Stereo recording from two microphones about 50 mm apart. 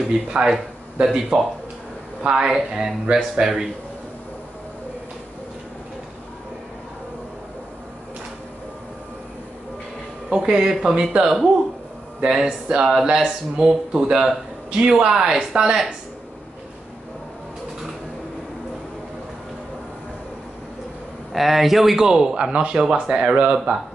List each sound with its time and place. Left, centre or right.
0.3 s speech: right
1.0 s speech: centre
10.3 s speech: centre
12.4 s speech: centre
21.3 s speech: centre